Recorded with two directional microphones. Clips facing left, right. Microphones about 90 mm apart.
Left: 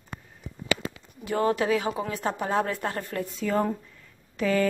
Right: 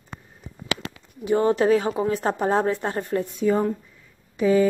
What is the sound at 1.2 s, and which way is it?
A woman's voice, 25° right (ahead or behind).